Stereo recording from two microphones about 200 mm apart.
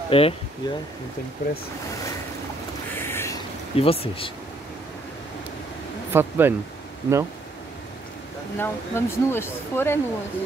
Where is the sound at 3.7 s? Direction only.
30° left (ahead or behind).